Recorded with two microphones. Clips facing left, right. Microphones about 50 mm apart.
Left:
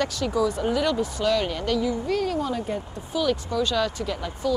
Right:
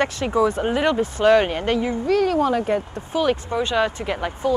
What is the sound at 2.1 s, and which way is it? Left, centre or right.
Speech, right.